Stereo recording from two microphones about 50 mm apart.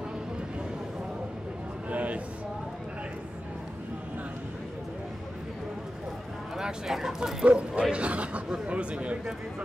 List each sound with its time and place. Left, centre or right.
1.9 s a sound: right
6.6 s speech: centre
7.4 s speech: right